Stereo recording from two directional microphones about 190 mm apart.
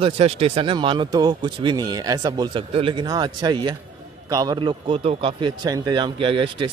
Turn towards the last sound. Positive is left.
turn(degrees=-25)  # may be behind; listen again after turning